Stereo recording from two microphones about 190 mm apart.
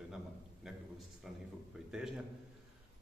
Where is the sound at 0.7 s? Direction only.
Centre (ahead or behind).